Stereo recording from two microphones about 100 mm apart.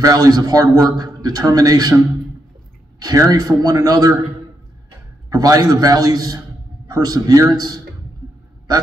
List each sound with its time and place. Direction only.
0.0 s a man's voice: 40° right (ahead or behind)
5.3 s a man's voice: 35° right (ahead or behind)